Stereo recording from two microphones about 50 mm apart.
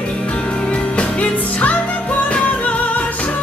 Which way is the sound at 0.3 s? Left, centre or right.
Left.